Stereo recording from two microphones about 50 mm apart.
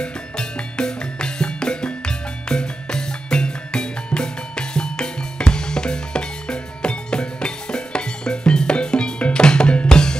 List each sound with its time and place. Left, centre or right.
0.0 s music: centre